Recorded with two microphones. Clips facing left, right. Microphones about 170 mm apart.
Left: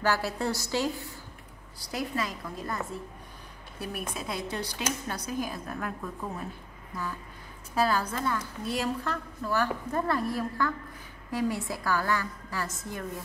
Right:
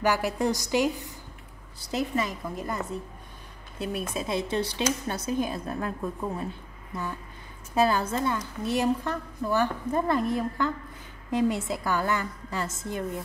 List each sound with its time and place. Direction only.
0.0 s a woman's voice: 15° right (ahead or behind)
7.7 s a woman's voice: 20° right (ahead or behind)